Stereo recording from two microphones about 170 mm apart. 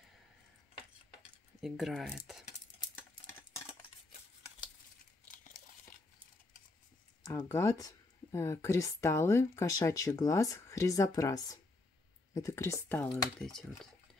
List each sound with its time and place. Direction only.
1.6 s speech: centre (ahead or behind)
7.2 s speech: 20° left (ahead or behind)